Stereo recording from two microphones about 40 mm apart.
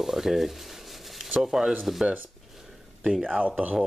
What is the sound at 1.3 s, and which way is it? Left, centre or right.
Speech, centre.